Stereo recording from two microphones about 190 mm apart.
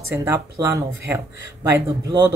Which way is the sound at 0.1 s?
15° right (ahead or behind).